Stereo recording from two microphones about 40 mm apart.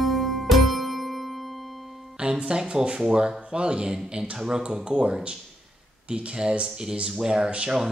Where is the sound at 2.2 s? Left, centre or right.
Centre.